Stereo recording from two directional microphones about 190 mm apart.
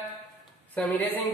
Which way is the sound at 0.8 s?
10° left (ahead or behind).